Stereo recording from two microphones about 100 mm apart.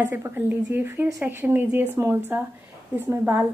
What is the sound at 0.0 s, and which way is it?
A woman's voice, 25° right (ahead or behind).